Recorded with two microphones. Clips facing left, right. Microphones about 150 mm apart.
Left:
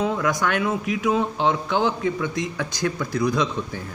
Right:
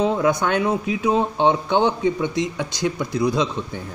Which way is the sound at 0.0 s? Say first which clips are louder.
Right 4 dB; 25° right (ahead or behind).